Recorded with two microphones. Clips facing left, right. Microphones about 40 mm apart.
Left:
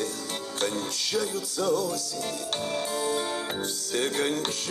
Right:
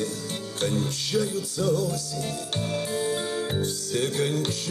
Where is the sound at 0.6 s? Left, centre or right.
Left.